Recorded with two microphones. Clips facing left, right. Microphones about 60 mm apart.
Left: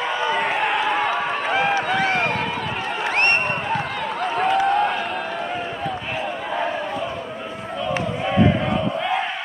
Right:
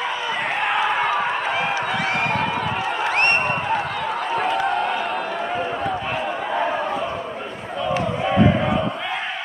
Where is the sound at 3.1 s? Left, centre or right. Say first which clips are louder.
Left 1 dB; centre.